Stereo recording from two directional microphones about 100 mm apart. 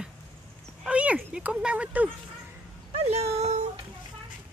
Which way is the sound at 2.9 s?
90° right.